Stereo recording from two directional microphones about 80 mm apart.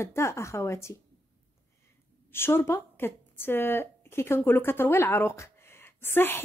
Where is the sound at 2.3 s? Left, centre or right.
Left.